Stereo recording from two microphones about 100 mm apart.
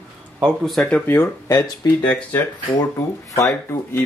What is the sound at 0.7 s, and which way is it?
Speech, 10° left (ahead or behind).